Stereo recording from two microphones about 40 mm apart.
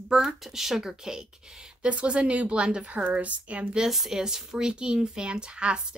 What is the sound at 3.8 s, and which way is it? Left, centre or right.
A woman's voice, centre.